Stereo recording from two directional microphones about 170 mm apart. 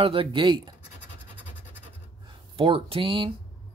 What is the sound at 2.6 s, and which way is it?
Speech, 35° right (ahead or behind).